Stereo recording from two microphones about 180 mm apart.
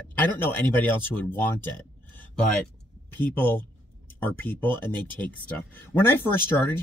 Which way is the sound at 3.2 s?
10° left (ahead or behind).